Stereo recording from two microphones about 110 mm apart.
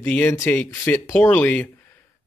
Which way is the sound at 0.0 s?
15° left (ahead or behind).